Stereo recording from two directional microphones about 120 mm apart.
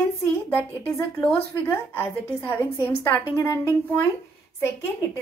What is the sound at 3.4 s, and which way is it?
Speech, 20° left (ahead or behind).